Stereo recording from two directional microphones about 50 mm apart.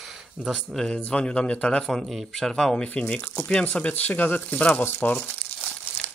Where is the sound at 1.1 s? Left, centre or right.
Centre.